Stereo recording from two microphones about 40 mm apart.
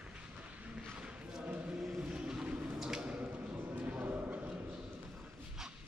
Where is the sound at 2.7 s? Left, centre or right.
Centre.